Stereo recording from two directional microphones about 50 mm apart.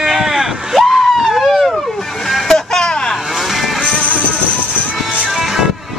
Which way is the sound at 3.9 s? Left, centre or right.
Centre.